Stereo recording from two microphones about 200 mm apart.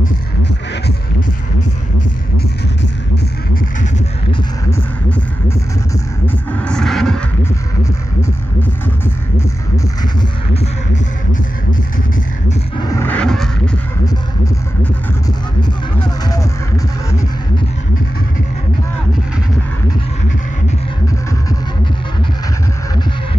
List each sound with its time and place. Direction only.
0.0 s music: 60° left (ahead or behind)
6.2 s vehicle: 5° left (ahead or behind)
12.4 s a sound: 20° left (ahead or behind); by 13.5 s 5° left (ahead or behind)
16.3 s music: 15° left (ahead or behind)